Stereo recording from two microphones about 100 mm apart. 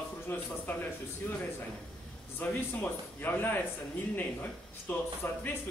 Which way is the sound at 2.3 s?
20° left (ahead or behind).